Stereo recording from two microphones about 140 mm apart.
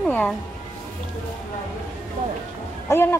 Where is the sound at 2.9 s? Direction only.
15° left (ahead or behind).